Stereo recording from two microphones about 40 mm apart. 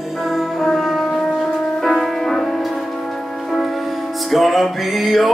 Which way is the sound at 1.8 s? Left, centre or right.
Centre.